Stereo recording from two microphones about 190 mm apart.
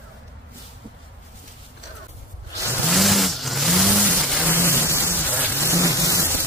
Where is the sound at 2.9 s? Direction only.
Centre (ahead or behind).